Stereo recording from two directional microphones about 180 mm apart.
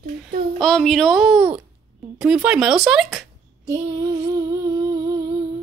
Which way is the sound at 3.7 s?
20° right (ahead or behind).